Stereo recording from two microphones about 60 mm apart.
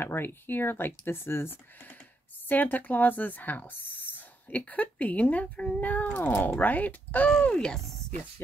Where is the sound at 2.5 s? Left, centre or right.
Left.